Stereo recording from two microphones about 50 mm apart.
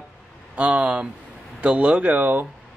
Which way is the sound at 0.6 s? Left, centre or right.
Right.